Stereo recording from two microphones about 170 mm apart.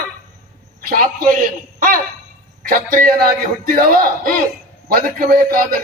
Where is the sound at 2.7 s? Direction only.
55° right (ahead or behind).